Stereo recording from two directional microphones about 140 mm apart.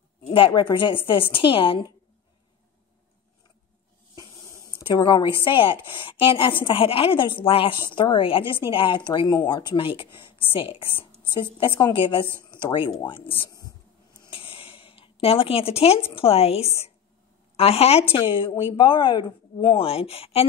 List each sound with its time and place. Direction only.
0.5 s speech: 35° left (ahead or behind)
4.1 s a sound: 25° left (ahead or behind)
5.9 s speech: 35° left (ahead or behind)
14.3 s a sound: 40° left (ahead or behind)
16.2 s speech: 45° left (ahead or behind)
18.1 s speech: 35° left (ahead or behind)